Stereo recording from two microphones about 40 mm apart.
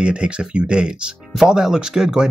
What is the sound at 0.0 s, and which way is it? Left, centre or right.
Speech, right.